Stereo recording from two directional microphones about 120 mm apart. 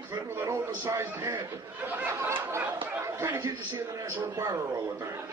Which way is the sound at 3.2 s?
20° right (ahead or behind).